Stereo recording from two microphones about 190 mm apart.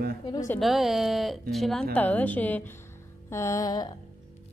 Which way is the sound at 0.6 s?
Centre (ahead or behind).